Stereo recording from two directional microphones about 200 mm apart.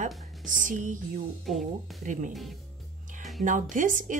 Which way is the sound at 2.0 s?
40° right (ahead or behind).